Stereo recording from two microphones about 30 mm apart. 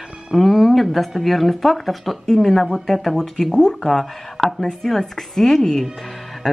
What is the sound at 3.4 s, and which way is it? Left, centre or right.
Speech, left.